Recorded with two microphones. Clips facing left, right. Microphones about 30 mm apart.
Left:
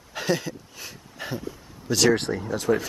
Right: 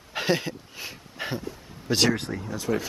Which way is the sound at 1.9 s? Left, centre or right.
Right.